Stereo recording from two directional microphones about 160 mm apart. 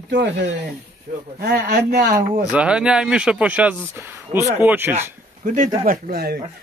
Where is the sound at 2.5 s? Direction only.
5° right (ahead or behind).